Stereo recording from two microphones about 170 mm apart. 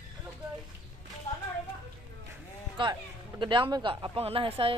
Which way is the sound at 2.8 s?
30° right (ahead or behind).